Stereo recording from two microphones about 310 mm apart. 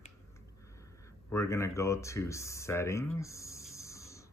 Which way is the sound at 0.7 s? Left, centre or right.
Centre.